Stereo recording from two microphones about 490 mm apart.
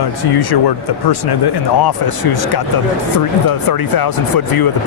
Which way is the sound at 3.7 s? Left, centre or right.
Left.